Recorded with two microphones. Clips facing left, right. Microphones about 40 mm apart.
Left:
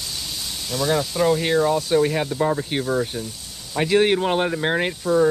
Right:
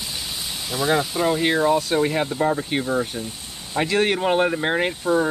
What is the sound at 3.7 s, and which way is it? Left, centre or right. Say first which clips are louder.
Speech: left 2 dB; centre.